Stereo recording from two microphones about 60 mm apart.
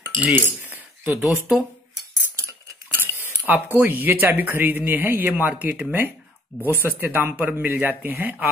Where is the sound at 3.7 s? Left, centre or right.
Right.